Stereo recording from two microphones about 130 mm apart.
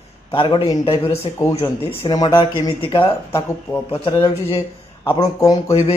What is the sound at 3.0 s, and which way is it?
Speech, 15° left (ahead or behind).